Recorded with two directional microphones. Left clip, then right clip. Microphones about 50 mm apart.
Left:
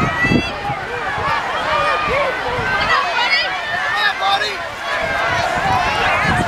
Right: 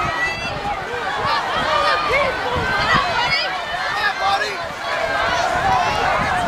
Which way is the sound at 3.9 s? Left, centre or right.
Centre.